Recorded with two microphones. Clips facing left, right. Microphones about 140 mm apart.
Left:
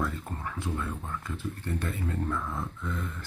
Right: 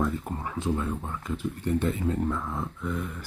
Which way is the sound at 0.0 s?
20° right (ahead or behind).